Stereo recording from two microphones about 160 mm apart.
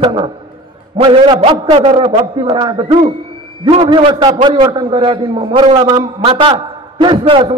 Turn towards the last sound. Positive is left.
turn(degrees=-30)  # may be behind; listen again after turning